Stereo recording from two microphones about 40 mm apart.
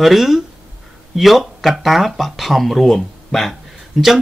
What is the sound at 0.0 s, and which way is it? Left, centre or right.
Speech, centre.